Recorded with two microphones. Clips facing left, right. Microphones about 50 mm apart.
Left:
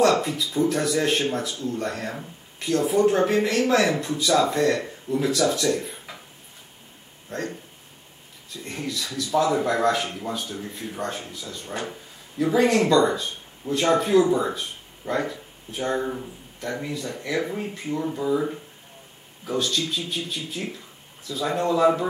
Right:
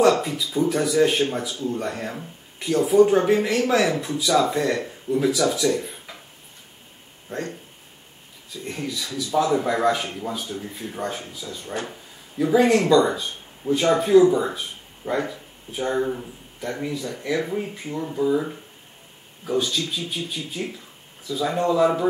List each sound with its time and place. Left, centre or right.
0.2 s speech: centre
7.3 s speech: centre
8.6 s speech: centre
15.0 s speech: centre
15.7 s speech: centre